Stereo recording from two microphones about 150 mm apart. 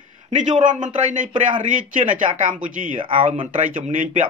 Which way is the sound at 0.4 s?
55° right (ahead or behind).